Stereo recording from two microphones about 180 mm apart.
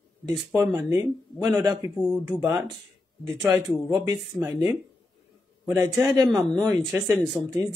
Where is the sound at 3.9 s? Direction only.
20° right (ahead or behind).